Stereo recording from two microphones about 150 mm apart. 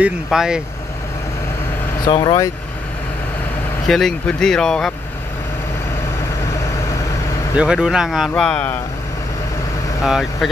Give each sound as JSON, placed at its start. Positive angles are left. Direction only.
{"t": 0.0, "sound": "speech", "side_deg": -5}
{"t": 2.0, "sound": "speech", "side_deg": 30}
{"t": 3.8, "sound": "speech", "side_deg": 5}
{"t": 7.5, "sound": "speech", "side_deg": -5}
{"t": 10.0, "sound": "speech", "side_deg": 0}